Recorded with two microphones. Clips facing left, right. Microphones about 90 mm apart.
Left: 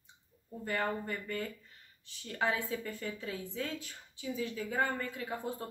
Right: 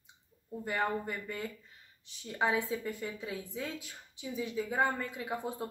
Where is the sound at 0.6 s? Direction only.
15° right (ahead or behind).